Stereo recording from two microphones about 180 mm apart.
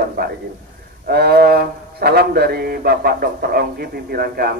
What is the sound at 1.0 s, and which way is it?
Speech, 60° right (ahead or behind).